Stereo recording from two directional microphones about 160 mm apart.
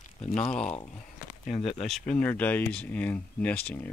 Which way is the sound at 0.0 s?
50° left (ahead or behind).